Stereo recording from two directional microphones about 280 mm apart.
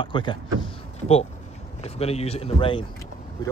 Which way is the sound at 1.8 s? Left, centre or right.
Left.